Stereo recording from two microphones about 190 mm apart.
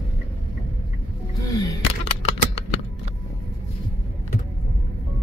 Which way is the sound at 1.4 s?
15° left (ahead or behind).